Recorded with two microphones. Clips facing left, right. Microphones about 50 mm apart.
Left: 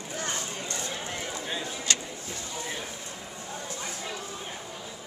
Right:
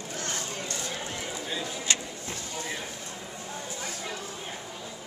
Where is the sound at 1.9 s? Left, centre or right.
Right.